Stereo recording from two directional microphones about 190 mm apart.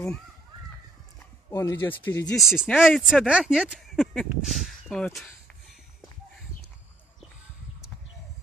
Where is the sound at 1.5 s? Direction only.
15° left (ahead or behind).